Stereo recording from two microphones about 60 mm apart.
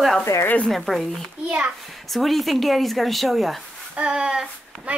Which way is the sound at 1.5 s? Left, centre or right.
Right.